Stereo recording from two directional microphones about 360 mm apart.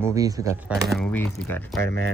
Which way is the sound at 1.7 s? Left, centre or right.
Right.